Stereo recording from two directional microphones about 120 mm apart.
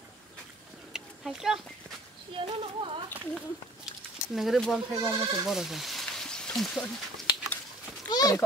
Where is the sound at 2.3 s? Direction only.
45° right (ahead or behind).